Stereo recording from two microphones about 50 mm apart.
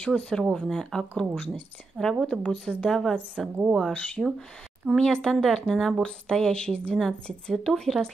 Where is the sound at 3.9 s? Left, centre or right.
Left.